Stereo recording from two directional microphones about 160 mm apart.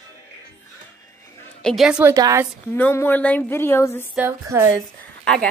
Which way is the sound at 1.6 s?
Centre (ahead or behind).